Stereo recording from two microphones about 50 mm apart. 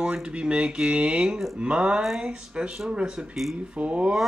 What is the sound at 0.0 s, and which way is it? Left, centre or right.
Speech, centre.